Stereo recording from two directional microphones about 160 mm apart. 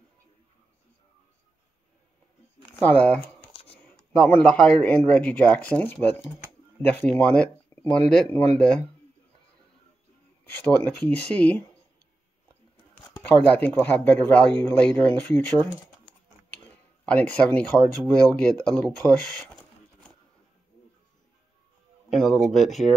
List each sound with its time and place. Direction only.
2.8 s speech: 10° left (ahead or behind)
3.5 s a sound: 35° left (ahead or behind)
3.9 s speech: 10° left (ahead or behind)
10.8 s speech: 10° left (ahead or behind)
13.0 s speech: 15° left (ahead or behind)
16.5 s a sound: 10° left (ahead or behind)
18.0 s speech: 5° left (ahead or behind)
22.1 s speech: centre (ahead or behind)